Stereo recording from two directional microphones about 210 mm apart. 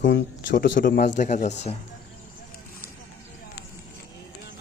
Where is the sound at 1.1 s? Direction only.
35° left (ahead or behind).